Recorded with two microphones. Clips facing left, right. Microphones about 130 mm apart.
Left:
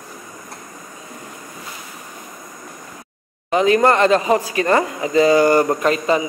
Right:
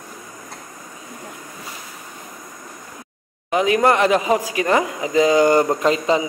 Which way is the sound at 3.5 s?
10° right (ahead or behind).